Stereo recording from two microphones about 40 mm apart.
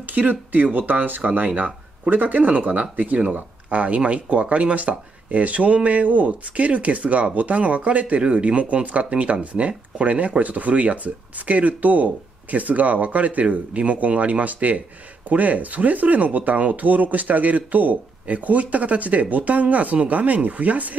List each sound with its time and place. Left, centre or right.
0.0 s speech: right